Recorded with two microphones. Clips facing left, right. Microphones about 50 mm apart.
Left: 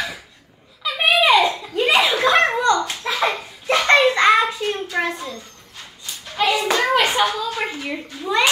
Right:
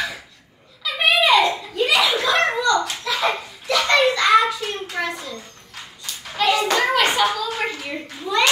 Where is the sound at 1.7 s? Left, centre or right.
Left.